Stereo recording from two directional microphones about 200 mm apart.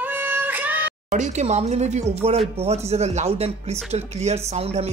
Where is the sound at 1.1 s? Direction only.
35° right (ahead or behind).